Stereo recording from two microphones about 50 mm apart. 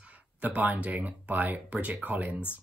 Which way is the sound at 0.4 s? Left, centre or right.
Right.